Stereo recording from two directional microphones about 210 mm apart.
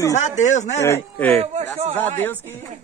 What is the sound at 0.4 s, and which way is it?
Speech, 35° left (ahead or behind).